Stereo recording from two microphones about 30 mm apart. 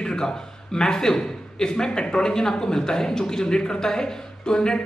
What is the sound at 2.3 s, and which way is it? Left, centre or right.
A woman's voice, centre.